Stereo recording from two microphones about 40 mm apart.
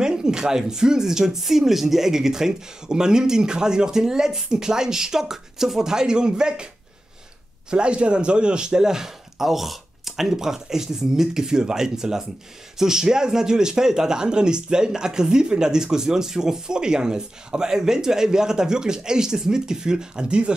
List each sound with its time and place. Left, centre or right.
0.0 s speech: centre
7.7 s speech: right